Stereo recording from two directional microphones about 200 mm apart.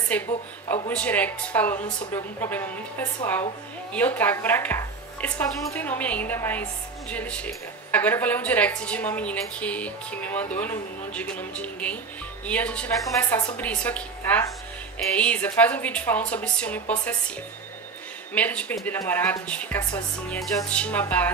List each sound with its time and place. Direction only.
0.1 s speech: 5° left (ahead or behind)
3.9 s speech: 10° left (ahead or behind)
18.3 s speech: 5° left (ahead or behind)